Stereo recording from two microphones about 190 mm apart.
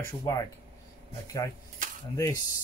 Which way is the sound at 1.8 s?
45° right (ahead or behind).